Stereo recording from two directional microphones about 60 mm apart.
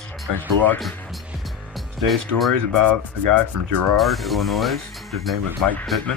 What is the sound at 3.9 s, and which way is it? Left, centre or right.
Speech, centre.